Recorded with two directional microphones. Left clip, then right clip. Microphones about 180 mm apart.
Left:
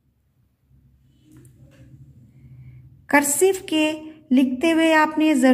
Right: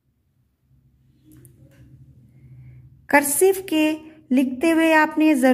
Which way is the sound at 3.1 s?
25° right (ahead or behind).